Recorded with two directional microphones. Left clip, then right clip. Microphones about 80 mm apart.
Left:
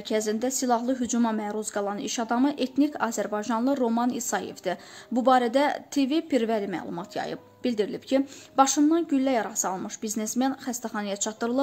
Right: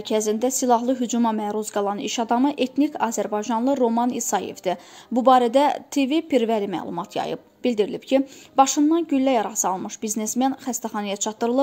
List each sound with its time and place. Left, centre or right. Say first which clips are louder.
0.1 s speech: right 5 dB; right
1.4 s a woman's voice: right 5 dB; right